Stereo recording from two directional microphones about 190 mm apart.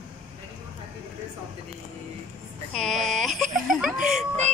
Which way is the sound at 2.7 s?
Centre (ahead or behind).